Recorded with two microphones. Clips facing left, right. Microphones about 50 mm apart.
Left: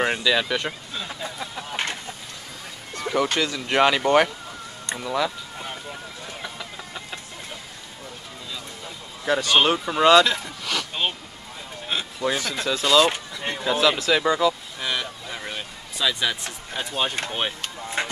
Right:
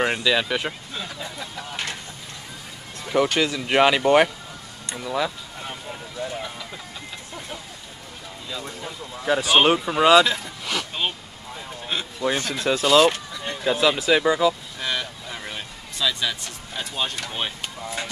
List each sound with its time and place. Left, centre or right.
0.0 s speech: centre
1.2 s vehicle: left
3.2 s speech: centre
4.9 s speech: centre
5.2 s a sound: centre
9.2 s speech: centre
9.5 s speech: centre
9.8 s speech: centre
10.6 s a sound: centre
11.9 s speech: centre
12.6 s speech: right
13.7 s speech: centre
18.0 s speech: left